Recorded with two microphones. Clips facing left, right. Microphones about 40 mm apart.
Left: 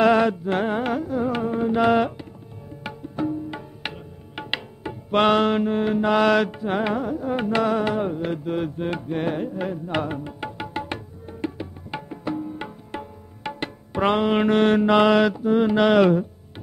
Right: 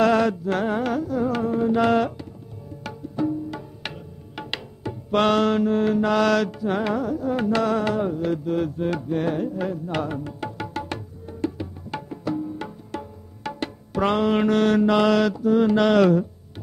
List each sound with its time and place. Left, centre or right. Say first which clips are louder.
0.0 s carnatic music: left 1 dB; left
2.8 s music: right 1 dB; left